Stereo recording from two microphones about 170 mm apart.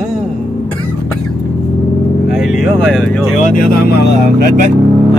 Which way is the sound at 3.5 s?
60° left (ahead or behind).